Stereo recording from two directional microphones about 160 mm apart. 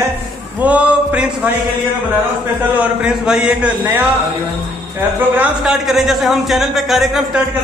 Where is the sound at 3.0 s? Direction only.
5° right (ahead or behind).